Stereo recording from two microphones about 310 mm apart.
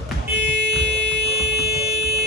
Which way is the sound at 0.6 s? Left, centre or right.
Right.